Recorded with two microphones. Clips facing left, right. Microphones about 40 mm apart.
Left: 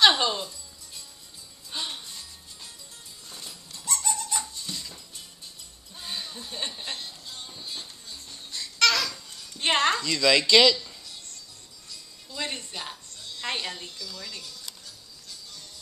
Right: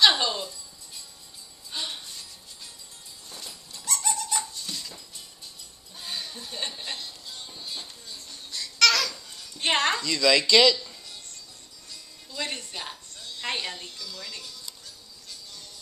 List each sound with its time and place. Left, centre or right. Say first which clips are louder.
0.2 s speech: left 1 dB; centre
1.7 s music: even; centre
3.3 s dog: right 1 dB; centre
5.9 s music: even; centre
8.3 s babbling: right 1 dB; centre
10.5 s speech: left 1 dB; centre
12.3 s music: even; centre
12.7 s music: even; centre